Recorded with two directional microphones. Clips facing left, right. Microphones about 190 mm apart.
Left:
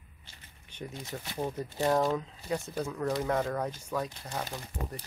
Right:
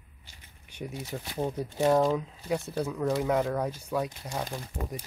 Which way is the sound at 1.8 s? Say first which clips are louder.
Right 4 dB; centre (ahead or behind).